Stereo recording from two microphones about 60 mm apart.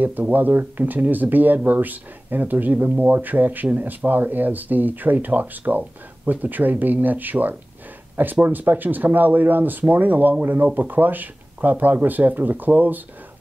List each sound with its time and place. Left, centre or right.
0.0 s speech: right